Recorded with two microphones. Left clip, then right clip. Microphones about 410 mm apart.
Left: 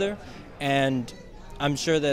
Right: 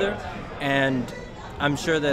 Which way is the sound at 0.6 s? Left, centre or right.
Left.